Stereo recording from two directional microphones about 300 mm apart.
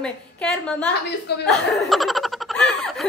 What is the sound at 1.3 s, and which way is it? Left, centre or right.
Speech, left.